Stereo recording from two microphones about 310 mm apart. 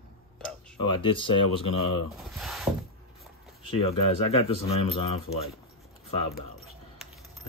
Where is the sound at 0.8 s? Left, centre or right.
Centre.